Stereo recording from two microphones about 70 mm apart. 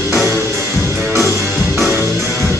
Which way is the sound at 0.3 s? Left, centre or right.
Right.